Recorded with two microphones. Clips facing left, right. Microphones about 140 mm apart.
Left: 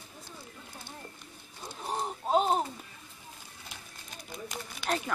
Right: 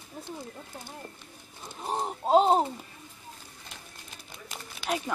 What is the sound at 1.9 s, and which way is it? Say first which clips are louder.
Speech: right 5 dB; 25° right (ahead or behind).